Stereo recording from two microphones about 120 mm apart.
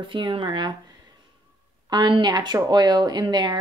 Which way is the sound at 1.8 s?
40° right (ahead or behind).